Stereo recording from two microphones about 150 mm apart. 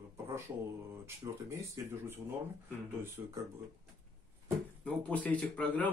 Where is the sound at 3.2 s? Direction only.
20° right (ahead or behind).